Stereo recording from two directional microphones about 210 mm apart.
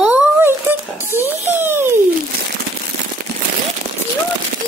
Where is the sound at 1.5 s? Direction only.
10° right (ahead or behind).